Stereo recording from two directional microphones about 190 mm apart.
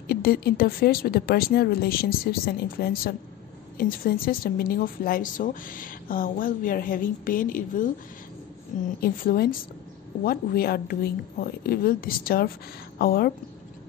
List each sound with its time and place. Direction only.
0.1 s a woman's voice: 55° left (ahead or behind)